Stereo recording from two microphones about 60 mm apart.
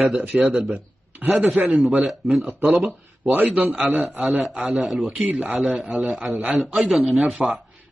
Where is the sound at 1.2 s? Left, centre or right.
Centre.